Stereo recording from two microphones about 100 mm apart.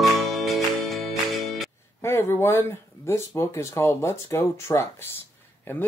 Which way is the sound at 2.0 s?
25° left (ahead or behind).